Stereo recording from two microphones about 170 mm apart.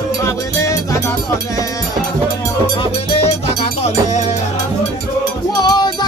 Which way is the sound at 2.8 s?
35° left (ahead or behind).